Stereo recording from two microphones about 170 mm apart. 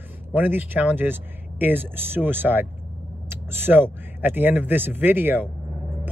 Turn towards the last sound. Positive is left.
turn(degrees=-10)  # may be behind; listen again after turning